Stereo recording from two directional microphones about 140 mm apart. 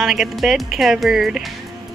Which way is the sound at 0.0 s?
Centre (ahead or behind).